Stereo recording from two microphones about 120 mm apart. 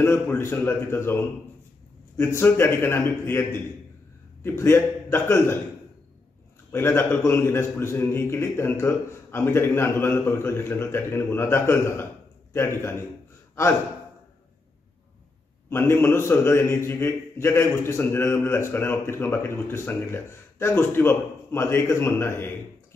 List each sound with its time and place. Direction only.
0.0 s a man's voice: 20° left (ahead or behind)
6.7 s a man's voice: 20° left (ahead or behind)
15.7 s a man's voice: 20° left (ahead or behind)